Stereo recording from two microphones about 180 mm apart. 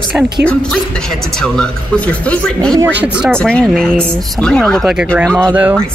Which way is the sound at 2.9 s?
5° right (ahead or behind).